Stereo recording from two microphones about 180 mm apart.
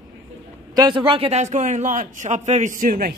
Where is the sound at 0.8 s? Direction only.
25° right (ahead or behind); by 3.1 s 50° right (ahead or behind).